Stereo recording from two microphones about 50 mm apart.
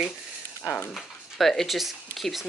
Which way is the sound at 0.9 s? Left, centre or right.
Centre.